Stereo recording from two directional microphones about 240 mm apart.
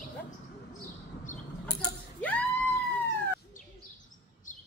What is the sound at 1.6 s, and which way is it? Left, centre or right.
Mechanisms, centre.